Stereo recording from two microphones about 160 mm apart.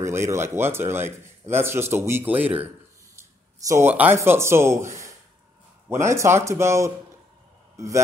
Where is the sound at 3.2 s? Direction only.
15° right (ahead or behind).